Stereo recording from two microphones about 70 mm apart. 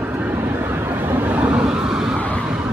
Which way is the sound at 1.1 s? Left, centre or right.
Right.